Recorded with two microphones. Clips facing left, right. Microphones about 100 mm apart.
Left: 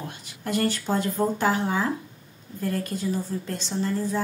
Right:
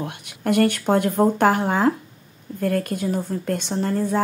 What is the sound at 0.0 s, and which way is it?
Speech, 65° right (ahead or behind).